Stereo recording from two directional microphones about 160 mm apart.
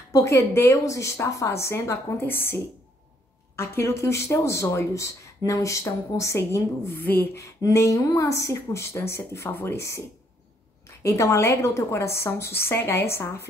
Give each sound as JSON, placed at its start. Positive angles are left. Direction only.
{"t": 0.1, "sound": "a woman's voice", "side_deg": 20}
{"t": 3.5, "sound": "a woman's voice", "side_deg": 15}